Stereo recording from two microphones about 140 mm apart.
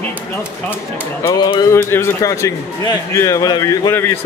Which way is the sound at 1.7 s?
20° left (ahead or behind).